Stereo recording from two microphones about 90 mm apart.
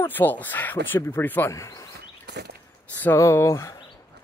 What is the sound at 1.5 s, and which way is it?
Speech, 35° left (ahead or behind).